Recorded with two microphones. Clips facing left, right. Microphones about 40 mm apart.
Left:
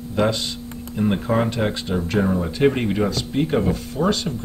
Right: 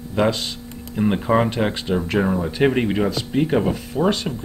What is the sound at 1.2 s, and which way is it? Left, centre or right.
Speech, right.